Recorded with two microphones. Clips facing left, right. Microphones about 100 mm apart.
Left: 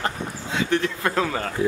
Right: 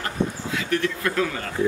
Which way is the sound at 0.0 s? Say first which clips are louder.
Right 2 dB; 30° left (ahead or behind).